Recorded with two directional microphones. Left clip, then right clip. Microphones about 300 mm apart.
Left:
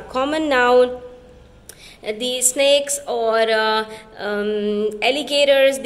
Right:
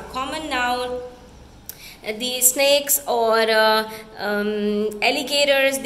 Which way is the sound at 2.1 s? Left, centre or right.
Centre.